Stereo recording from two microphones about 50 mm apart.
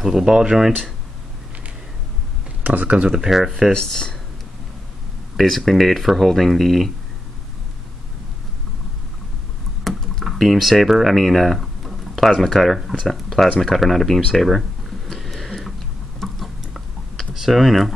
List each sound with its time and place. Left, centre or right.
0.0 s speech: centre
2.6 s speech: right
3.1 s speech: centre
3.7 s speech: centre
5.7 s speech: centre
9.8 s speech: centre
15.1 s a sound: centre
17.3 s speech: centre